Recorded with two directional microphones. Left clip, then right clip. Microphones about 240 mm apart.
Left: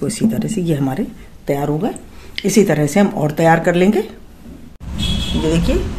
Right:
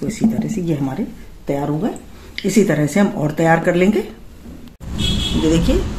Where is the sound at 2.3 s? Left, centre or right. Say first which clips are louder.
Left 2 dB; centre.